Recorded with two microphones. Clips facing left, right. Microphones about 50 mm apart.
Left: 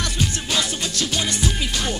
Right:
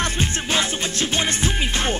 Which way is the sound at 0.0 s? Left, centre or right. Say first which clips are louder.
Right 2 dB; right.